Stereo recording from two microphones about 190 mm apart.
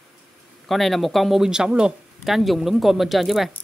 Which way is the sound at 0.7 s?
Centre (ahead or behind).